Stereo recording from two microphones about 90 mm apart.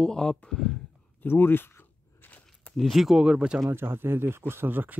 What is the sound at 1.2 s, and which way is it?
Biting, 25° left (ahead or behind).